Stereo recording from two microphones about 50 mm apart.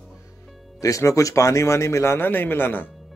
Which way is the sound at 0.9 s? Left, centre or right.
Left.